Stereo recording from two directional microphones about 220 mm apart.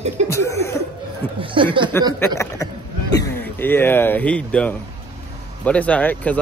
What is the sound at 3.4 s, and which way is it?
Speech, 10° left (ahead or behind).